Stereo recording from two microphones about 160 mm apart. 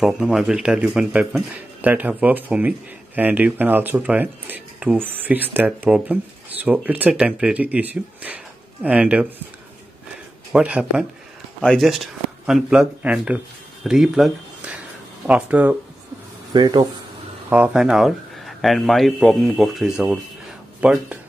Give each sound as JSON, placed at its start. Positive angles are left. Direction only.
{"t": 0.0, "sound": "speech", "side_deg": 0}
{"t": 10.5, "sound": "speech", "side_deg": -5}
{"t": 16.5, "sound": "speech", "side_deg": -25}
{"t": 17.5, "sound": "speech", "side_deg": -5}